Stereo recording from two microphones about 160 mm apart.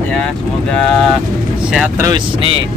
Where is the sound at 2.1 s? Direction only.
30° right (ahead or behind).